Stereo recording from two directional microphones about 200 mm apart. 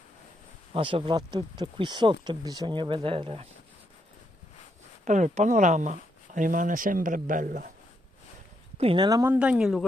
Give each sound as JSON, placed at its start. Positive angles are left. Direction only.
{"t": 0.7, "sound": "speech", "side_deg": -25}
{"t": 5.0, "sound": "speech", "side_deg": -40}
{"t": 8.7, "sound": "speech", "side_deg": -25}